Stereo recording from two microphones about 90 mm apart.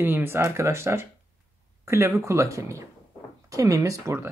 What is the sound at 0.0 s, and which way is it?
Speech, 25° right (ahead or behind).